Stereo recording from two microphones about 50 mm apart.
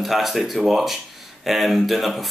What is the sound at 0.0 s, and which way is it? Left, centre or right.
Speech, centre.